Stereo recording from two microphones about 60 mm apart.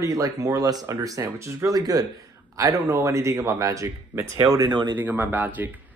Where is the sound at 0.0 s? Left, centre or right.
Right.